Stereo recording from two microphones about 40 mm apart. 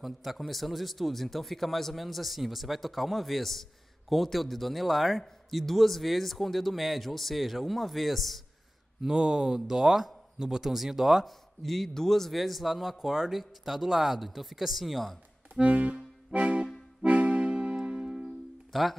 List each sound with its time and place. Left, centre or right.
0.0 s speech: centre
9.0 s speech: centre
11.2 s speech: centre
15.6 s music: right
16.3 s accordion: right
17.0 s music: right; by 18.3 s centre
18.7 s speech: centre